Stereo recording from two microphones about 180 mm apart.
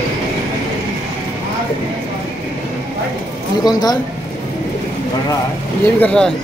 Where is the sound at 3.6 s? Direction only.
20° left (ahead or behind).